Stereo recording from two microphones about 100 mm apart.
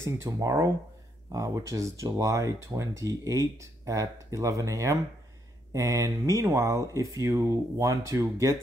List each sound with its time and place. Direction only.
0.0 s speech: 30° right (ahead or behind)